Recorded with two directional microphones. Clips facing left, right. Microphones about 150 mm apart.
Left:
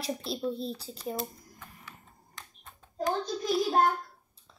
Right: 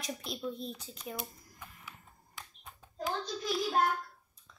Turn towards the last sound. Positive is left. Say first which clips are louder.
# left 5 dB
turn(degrees=30)  # may be behind; listen again after turning